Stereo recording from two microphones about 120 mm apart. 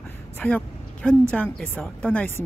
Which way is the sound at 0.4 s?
10° left (ahead or behind).